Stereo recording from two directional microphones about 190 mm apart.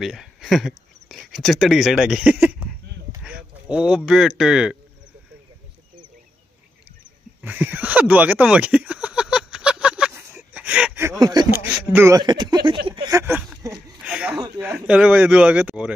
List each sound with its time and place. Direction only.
0.0 s speech: centre (ahead or behind)
7.4 s speech: 10° right (ahead or behind); by 13.2 s 25° right (ahead or behind)
13.7 s a sound: 5° right (ahead or behind)
14.6 s a man's voice: 5° right (ahead or behind)